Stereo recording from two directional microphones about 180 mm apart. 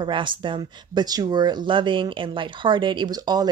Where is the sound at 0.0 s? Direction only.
25° right (ahead or behind).